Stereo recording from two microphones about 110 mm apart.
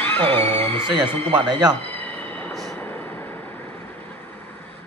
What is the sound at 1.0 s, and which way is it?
Speech, 20° left (ahead or behind).